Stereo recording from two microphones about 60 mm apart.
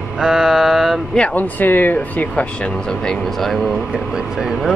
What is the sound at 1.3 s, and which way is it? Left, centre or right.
Speech, left.